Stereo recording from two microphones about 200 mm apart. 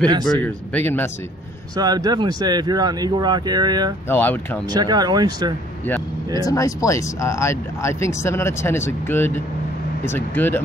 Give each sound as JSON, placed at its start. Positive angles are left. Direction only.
{"t": 0.2, "sound": "speech", "side_deg": 10}
{"t": 1.8, "sound": "speech", "side_deg": -20}
{"t": 4.1, "sound": "speech", "side_deg": 10}
{"t": 4.7, "sound": "speech", "side_deg": -20}
{"t": 6.4, "sound": "speech", "side_deg": 15}